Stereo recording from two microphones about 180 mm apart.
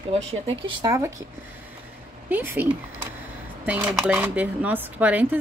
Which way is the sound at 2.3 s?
10° right (ahead or behind).